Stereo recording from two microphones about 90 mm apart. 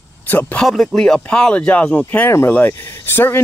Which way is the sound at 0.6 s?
5° left (ahead or behind).